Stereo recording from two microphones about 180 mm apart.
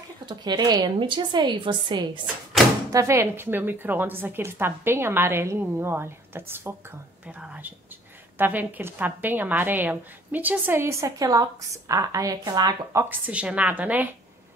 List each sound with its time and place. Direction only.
0.3 s a woman's voice: 25° right (ahead or behind)
2.9 s a woman's voice: 15° right (ahead or behind)